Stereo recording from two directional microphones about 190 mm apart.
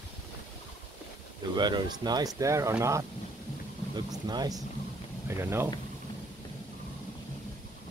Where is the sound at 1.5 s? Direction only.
20° right (ahead or behind).